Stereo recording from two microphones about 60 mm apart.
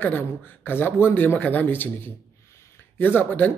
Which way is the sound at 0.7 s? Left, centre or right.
Left.